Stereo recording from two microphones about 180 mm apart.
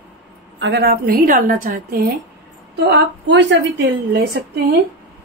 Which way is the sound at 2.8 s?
75° right (ahead or behind).